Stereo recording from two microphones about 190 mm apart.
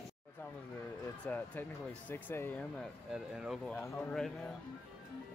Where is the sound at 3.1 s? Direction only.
Centre (ahead or behind).